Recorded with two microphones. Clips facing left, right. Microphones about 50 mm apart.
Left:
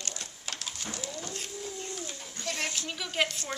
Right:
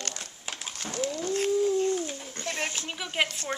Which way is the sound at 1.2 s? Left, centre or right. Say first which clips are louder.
Right 14 dB; right.